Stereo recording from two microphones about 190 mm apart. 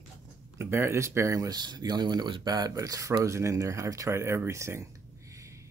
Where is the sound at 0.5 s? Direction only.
15° right (ahead or behind).